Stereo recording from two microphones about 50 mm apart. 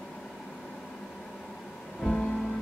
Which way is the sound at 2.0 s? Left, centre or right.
Centre.